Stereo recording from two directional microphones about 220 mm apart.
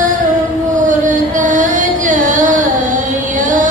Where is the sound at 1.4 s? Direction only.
35° right (ahead or behind).